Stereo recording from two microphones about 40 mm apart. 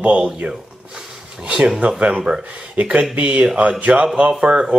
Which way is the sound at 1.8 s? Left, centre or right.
Right.